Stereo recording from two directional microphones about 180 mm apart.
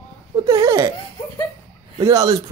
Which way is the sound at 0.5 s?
15° right (ahead or behind).